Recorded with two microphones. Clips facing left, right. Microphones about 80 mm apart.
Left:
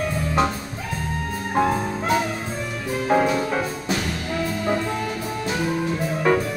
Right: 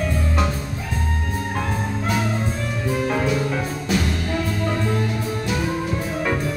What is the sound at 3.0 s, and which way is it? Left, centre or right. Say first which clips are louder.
Music: left 6 dB; left.